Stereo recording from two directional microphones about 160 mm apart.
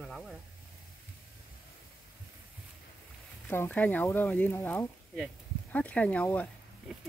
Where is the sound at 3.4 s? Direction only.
10° left (ahead or behind).